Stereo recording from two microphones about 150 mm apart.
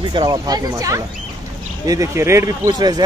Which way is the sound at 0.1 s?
25° right (ahead or behind).